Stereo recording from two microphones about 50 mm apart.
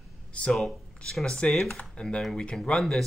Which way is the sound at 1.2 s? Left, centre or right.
Centre.